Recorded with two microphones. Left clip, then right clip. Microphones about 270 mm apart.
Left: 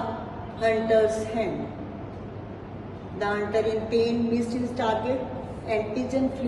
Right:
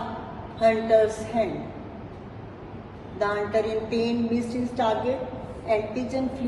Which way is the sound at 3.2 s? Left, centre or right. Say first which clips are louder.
Right 1 dB; centre.